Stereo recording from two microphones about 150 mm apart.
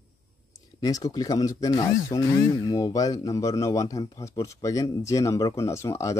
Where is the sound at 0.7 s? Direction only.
25° left (ahead or behind).